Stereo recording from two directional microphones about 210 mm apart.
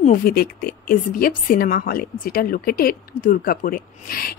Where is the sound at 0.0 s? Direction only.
40° left (ahead or behind).